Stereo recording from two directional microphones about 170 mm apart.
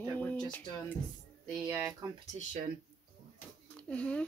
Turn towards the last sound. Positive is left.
turn(degrees=5)  # may be behind; listen again after turning